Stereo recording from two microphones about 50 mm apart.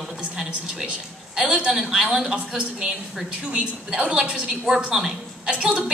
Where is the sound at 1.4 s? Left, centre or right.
Right.